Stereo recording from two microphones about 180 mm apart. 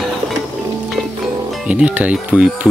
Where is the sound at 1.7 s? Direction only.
5° right (ahead or behind).